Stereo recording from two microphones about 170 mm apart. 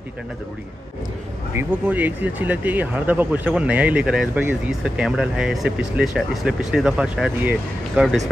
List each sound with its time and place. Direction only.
1.5 s speech: 10° right (ahead or behind)